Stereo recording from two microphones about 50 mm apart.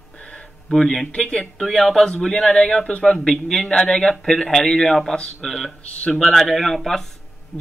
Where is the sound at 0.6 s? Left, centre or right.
Centre.